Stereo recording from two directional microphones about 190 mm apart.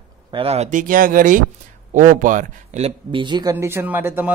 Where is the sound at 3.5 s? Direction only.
10° right (ahead or behind).